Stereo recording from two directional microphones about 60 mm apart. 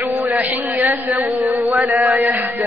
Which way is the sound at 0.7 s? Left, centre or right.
Right.